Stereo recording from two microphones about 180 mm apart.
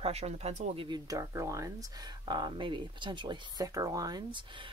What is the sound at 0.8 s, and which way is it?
Speech, 20° right (ahead or behind).